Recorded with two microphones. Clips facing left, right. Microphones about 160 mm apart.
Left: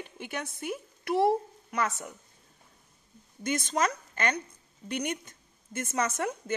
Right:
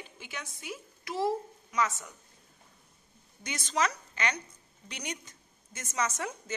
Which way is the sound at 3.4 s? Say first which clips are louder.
Left 3 dB; 50° left (ahead or behind).